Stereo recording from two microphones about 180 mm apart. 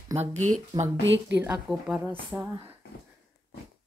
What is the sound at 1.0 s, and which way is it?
Speech, 90° right.